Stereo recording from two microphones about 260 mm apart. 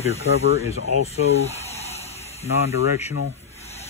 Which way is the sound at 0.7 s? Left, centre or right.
Left.